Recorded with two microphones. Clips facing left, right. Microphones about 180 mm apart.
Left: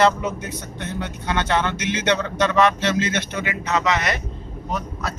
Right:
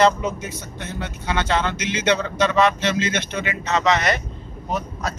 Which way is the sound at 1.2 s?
10° right (ahead or behind).